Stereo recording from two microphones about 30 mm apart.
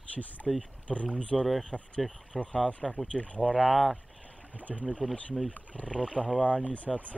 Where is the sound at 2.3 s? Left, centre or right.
Centre.